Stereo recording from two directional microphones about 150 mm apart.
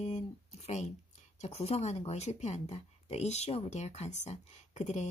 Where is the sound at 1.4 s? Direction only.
45° left (ahead or behind).